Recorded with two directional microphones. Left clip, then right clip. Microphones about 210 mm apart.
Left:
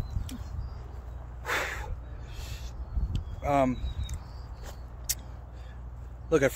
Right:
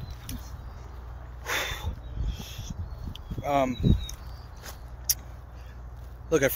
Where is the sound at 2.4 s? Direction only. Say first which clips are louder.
Right 3 dB; 45° left (ahead or behind).